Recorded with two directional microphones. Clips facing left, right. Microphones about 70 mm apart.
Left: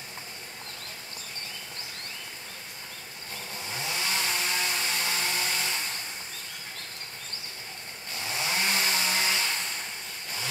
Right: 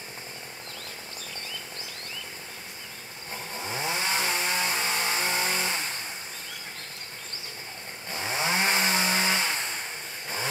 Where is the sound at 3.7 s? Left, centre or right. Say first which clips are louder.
Right 3 dB; right.